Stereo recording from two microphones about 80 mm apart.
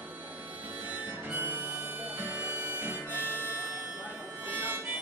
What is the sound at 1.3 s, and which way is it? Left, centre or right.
Harmonica, right.